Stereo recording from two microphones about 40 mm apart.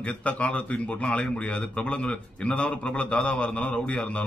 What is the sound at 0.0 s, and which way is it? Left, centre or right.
A man's voice, left.